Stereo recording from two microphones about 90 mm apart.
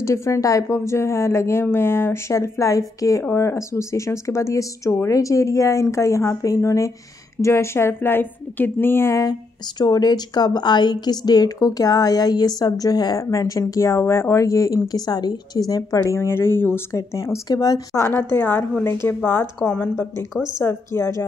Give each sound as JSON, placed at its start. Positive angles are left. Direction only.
{"t": 0.0, "sound": "a woman's voice", "side_deg": 35}
{"t": 9.2, "sound": "speech", "side_deg": 50}
{"t": 16.2, "sound": "a woman's voice", "side_deg": 30}
{"t": 18.3, "sound": "a woman's voice", "side_deg": 25}
{"t": 20.5, "sound": "a woman's voice", "side_deg": 30}